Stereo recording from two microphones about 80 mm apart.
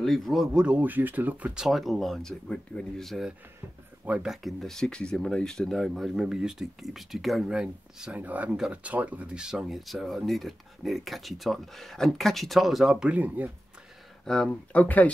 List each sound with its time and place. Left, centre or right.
0.0 s speech: centre
0.6 s speech: centre
1.7 s speech: centre
4.0 s speech: centre
4.3 s speech: centre
8.5 s speech: centre
12.9 s speech: centre
14.2 s speech: centre